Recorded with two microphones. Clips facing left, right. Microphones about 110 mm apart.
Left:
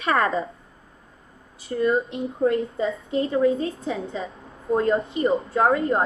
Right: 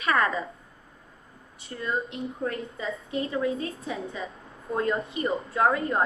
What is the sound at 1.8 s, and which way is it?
A woman's voice, 30° left (ahead or behind).